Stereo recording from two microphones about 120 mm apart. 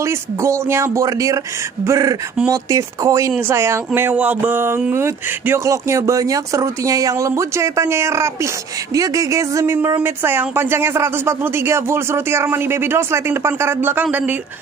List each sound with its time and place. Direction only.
0.0 s speech: 25° right (ahead or behind)